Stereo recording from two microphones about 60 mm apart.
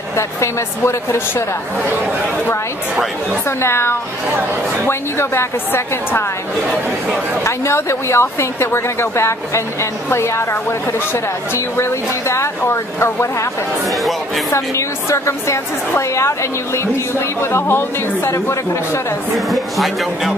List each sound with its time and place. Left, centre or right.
0.4 s a woman's voice: left
3.4 s a woman's voice: left
7.4 s a woman's voice: left
14.5 s a woman's voice: left
18.3 s a woman's voice: left
19.3 s speech: centre